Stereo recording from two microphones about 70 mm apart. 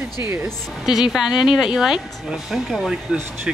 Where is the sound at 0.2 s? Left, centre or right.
Right.